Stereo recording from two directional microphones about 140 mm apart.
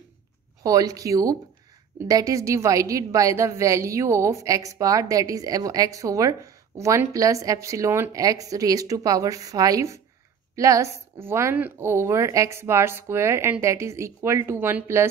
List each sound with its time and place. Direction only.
0.7 s a woman's voice: 25° right (ahead or behind)